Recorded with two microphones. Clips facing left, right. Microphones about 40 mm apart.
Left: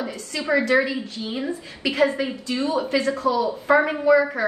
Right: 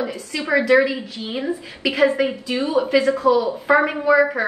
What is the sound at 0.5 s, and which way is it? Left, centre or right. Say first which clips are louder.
A woman's voice: right 4 dB; right.